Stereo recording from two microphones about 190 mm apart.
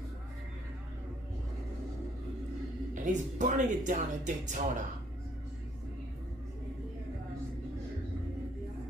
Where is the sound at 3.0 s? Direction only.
40° right (ahead or behind).